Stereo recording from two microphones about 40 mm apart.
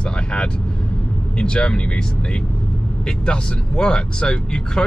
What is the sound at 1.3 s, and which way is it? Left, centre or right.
Speech, left.